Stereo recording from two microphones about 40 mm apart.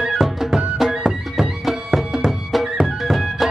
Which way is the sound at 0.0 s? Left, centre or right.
Centre.